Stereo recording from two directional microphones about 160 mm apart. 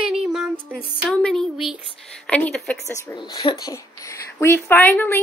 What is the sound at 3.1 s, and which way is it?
Speech, 25° left (ahead or behind).